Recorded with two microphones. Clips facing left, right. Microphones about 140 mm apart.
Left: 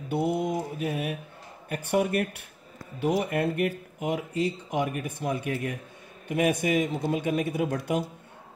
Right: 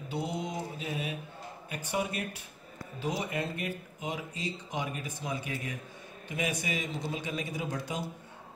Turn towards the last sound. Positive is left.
turn(degrees=60)  # may be behind; listen again after turning